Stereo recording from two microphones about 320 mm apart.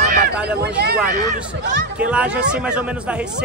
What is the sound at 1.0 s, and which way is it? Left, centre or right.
Speech, right.